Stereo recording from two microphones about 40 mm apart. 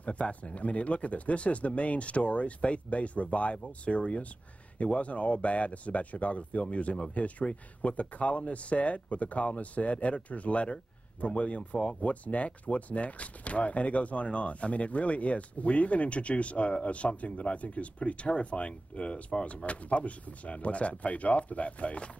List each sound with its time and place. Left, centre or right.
0.0 s speech: left